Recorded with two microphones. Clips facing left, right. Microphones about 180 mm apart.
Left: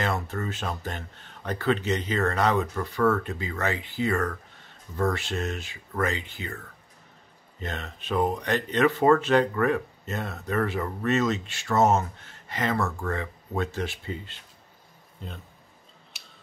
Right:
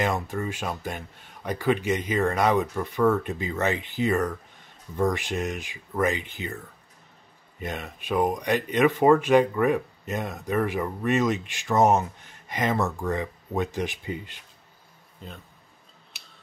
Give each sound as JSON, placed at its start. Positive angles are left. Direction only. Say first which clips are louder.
{"t": 0.0, "sound": "speech", "louder": "right 2 dB", "side_deg": -15}